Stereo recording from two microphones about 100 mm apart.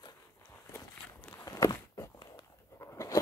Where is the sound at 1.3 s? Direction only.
35° left (ahead or behind).